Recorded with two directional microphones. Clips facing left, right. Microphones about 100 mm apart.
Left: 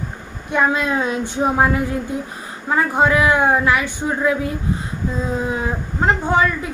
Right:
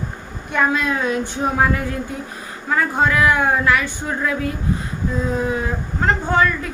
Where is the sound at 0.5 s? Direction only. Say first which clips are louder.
Left 1 dB; 20° left (ahead or behind).